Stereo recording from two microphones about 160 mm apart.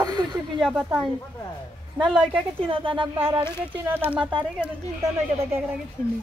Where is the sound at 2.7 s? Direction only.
30° right (ahead or behind).